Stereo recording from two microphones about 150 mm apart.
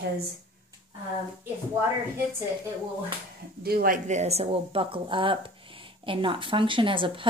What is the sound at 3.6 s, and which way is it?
Speech, 85° right.